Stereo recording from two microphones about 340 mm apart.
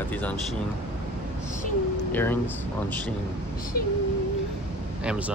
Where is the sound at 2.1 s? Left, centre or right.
Centre.